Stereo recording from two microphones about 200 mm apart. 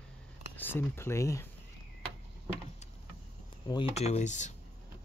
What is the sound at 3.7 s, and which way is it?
Speech, 30° left (ahead or behind).